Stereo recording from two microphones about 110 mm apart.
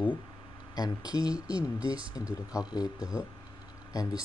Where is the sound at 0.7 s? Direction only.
35° left (ahead or behind).